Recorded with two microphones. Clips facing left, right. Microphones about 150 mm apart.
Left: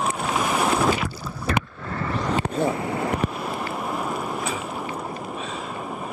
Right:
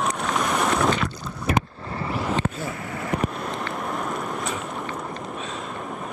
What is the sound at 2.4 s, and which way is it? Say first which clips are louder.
Vehicle: left 6 dB; 30° left (ahead or behind).